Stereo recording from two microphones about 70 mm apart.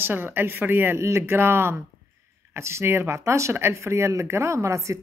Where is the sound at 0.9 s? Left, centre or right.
Right.